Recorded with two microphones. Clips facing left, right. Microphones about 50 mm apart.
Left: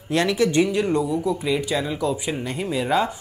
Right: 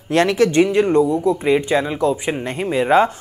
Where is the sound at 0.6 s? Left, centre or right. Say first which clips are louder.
Right 6 dB; right.